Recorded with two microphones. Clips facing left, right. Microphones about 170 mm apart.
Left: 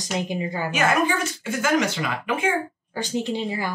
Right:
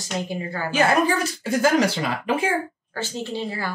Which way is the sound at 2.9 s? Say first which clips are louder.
Left 4 dB; 15° left (ahead or behind).